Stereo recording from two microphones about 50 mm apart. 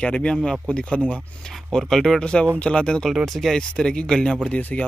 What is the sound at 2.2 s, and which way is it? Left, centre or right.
Speech, centre.